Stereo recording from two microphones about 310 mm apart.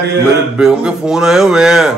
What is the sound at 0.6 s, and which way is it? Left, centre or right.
Speech, centre.